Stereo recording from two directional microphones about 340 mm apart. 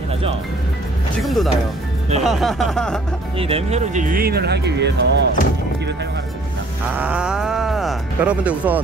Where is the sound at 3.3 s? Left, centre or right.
Centre.